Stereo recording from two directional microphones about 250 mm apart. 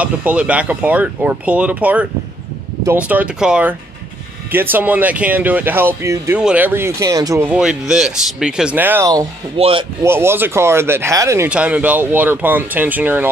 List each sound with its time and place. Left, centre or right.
0.0 s speech: centre; by 9.8 s right
10.0 s speech: centre